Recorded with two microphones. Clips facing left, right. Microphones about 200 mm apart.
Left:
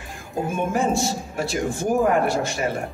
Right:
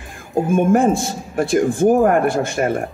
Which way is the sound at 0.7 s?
55° right (ahead or behind).